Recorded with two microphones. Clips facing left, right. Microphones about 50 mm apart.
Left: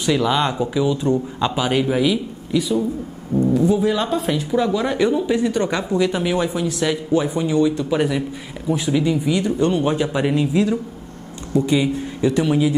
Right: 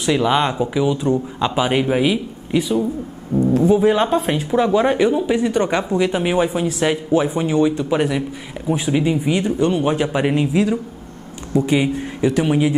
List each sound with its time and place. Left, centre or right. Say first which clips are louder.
0.0 s speech: right 2 dB; centre
1.5 s speech: right 2 dB; centre
4.9 s speech: right 1 dB; centre
7.7 s speech: right 1 dB; centre; by 9.5 s right
9.6 s speech: right 1 dB; centre